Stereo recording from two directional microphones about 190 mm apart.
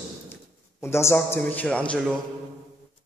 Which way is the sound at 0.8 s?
15° left (ahead or behind).